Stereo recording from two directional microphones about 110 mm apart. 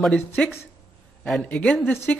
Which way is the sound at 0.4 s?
10° left (ahead or behind).